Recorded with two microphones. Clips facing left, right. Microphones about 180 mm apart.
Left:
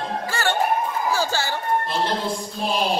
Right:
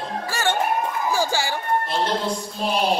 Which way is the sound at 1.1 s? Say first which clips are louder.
Right 1 dB; 15° right (ahead or behind).